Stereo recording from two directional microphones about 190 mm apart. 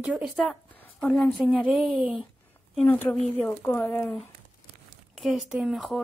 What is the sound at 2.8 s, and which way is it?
A woman's voice, 10° left (ahead or behind).